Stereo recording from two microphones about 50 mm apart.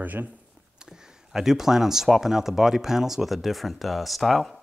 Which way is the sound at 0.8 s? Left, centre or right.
Centre.